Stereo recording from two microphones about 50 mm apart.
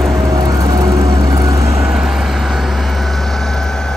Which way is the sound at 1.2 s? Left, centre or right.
Right.